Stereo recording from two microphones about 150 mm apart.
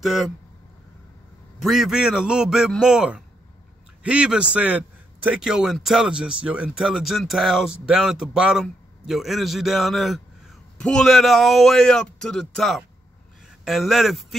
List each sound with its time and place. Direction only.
0.0 s a man's voice: centre (ahead or behind)
1.6 s a man's voice: 5° right (ahead or behind)